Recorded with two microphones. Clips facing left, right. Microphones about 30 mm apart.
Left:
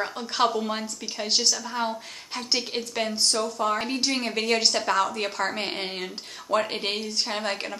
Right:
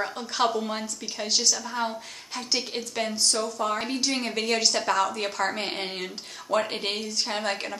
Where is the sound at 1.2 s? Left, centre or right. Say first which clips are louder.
Left 1 dB; left.